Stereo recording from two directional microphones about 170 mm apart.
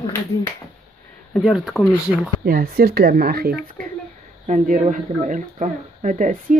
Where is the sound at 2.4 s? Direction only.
60° right (ahead or behind).